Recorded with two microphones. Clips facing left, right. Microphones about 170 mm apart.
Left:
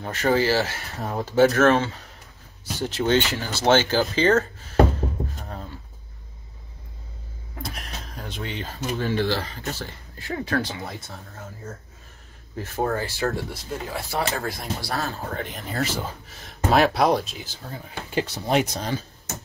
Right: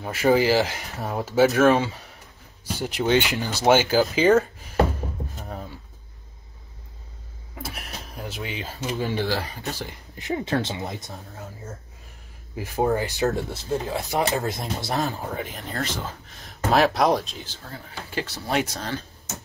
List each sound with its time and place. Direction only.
0.0 s speech: 10° right (ahead or behind)
7.6 s speech: 5° right (ahead or behind)
15.4 s speech: centre (ahead or behind)